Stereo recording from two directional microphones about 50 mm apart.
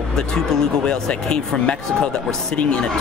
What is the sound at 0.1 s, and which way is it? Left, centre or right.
Speech, centre.